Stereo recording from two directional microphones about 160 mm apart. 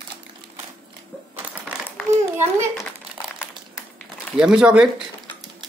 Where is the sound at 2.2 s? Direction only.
15° right (ahead or behind).